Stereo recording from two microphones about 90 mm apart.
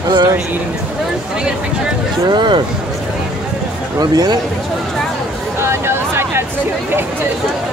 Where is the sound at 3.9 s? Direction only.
45° right (ahead or behind).